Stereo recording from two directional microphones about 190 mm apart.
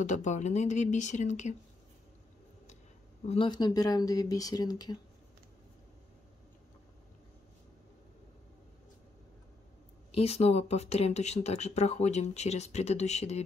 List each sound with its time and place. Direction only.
0.0 s speech: 40° left (ahead or behind)
3.3 s speech: 25° left (ahead or behind)
10.1 s speech: 35° left (ahead or behind)